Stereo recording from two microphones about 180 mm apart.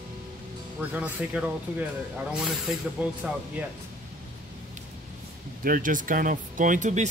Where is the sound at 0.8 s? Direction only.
10° right (ahead or behind).